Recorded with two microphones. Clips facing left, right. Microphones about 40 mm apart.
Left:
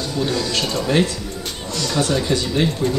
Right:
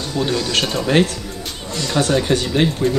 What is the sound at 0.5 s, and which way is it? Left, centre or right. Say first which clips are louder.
Speech: right 3 dB; right.